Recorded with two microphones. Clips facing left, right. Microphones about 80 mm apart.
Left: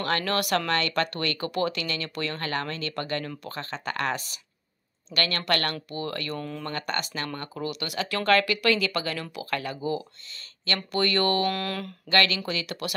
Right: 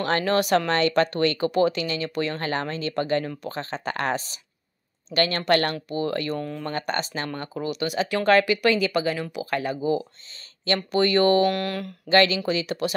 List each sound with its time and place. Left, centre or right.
0.0 s speech: right
6.3 s speech: centre
6.7 s speech: right
11.5 s mantra: centre
12.1 s speech: right